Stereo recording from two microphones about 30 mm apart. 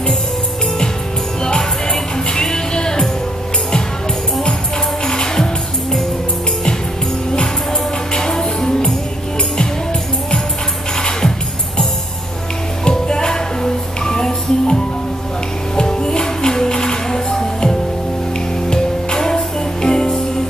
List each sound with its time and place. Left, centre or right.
1.6 s music: centre
5.0 s music: left
8.1 s music: left
11.0 s music: left
12.8 s music: left